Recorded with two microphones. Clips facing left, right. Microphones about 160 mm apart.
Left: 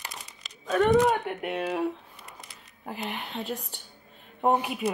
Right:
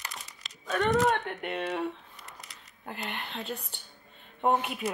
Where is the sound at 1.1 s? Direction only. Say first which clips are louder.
Left 3 dB; centre (ahead or behind).